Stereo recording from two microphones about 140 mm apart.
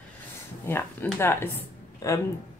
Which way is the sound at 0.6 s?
15° left (ahead or behind).